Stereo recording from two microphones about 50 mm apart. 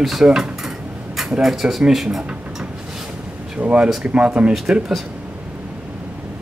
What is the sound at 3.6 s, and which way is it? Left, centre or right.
Speech, right.